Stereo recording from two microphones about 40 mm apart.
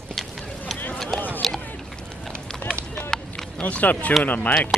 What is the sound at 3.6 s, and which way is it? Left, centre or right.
Speech, left.